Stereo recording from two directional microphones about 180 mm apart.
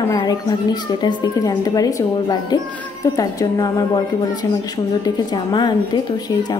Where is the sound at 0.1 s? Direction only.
20° left (ahead or behind).